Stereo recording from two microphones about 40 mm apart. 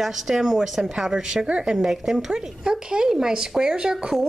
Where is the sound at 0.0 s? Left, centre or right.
Centre.